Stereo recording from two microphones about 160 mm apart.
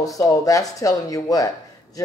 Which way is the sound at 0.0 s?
20° left (ahead or behind).